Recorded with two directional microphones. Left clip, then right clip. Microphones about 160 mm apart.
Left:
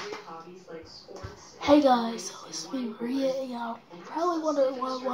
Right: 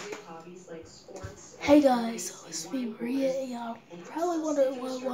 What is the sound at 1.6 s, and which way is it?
Speech, 5° right (ahead or behind).